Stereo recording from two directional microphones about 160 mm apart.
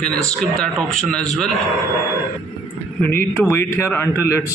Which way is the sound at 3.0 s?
15° left (ahead or behind).